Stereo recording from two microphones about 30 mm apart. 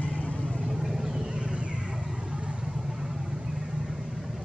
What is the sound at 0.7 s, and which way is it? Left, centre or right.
Vehicle, centre.